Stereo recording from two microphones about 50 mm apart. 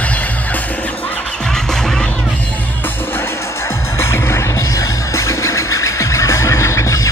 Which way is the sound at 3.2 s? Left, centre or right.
Left.